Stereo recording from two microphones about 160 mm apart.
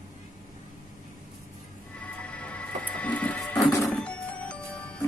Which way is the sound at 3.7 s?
20° left (ahead or behind).